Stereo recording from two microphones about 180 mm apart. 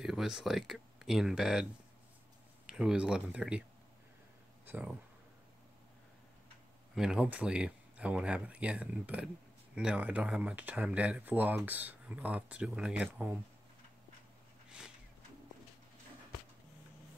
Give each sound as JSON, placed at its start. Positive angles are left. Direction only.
{"t": 0.0, "sound": "speech", "side_deg": 0}
{"t": 4.6, "sound": "speech", "side_deg": -10}
{"t": 7.0, "sound": "speech", "side_deg": -5}